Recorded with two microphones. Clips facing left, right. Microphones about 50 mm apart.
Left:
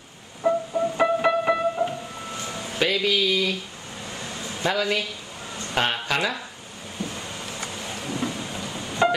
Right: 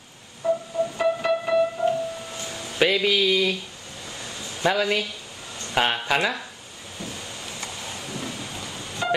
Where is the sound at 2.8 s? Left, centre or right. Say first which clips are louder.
Right 2 dB; centre.